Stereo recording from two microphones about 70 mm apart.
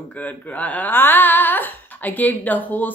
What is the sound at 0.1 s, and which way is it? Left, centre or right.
Speech, left.